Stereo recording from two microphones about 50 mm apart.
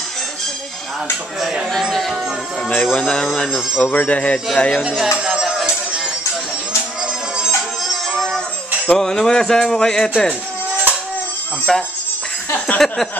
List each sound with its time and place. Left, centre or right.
1.8 s chatter: centre
2.9 s speech: centre
3.7 s speech: left
4.8 s speech: centre
5.2 s music: centre
7.0 s music: centre
7.8 s music: centre
8.8 s speech: centre
11.7 s speech: centre
12.5 s a sound: left
12.8 s speech: centre